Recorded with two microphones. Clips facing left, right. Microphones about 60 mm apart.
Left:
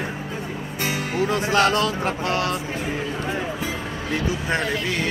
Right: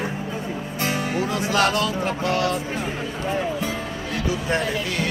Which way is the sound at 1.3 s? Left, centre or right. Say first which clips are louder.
Left 2 dB; left.